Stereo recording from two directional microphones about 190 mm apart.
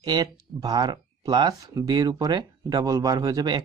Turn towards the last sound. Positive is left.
turn(degrees=-20)  # may be behind; listen again after turning